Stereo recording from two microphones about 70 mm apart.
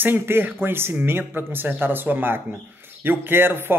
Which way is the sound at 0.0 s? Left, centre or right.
Right.